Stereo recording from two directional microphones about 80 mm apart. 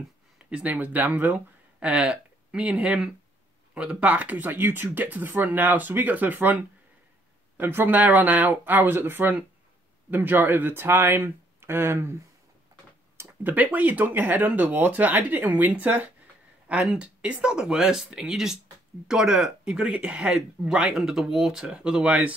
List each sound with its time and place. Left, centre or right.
0.5 s speech: centre
13.2 s speech: right